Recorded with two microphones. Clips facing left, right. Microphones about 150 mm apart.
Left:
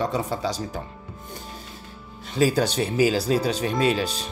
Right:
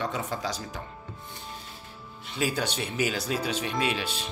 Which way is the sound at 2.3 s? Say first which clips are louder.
Left 8 dB; 35° left (ahead or behind).